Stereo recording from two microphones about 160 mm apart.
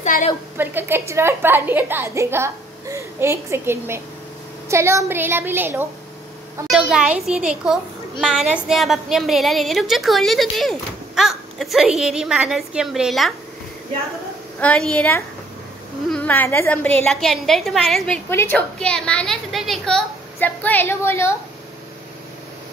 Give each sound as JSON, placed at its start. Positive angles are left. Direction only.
{"t": 0.0, "sound": "a woman's voice", "side_deg": 50}
{"t": 0.6, "sound": "a woman's voice", "side_deg": -15}
{"t": 14.6, "sound": "a woman's voice", "side_deg": 5}